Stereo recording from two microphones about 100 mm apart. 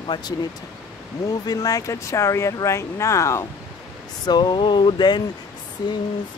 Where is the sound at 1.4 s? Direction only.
40° left (ahead or behind).